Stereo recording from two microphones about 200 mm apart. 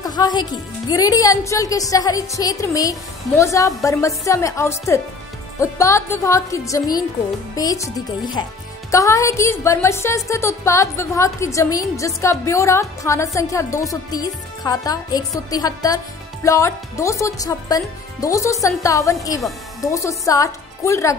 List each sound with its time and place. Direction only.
0.0 s speech: 20° left (ahead or behind)